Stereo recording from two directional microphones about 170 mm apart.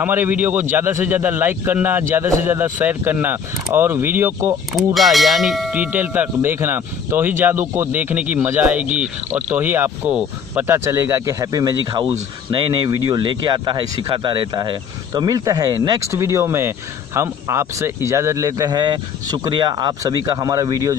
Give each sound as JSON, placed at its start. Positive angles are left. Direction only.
{"t": 0.0, "sound": "a man's voice", "side_deg": -10}
{"t": 4.7, "sound": "a man's voice", "side_deg": 0}